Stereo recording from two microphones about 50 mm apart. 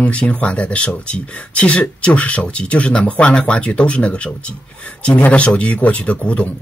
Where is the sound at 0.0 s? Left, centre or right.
Left.